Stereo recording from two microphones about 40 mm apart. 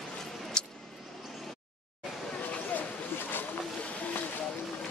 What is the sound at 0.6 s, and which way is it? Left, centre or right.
Vehicle, centre.